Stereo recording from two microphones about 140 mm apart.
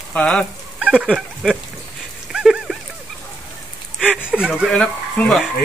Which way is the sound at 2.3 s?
5° right (ahead or behind).